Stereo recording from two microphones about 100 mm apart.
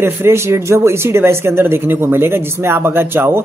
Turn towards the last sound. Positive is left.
turn(degrees=-20)  # may be behind; listen again after turning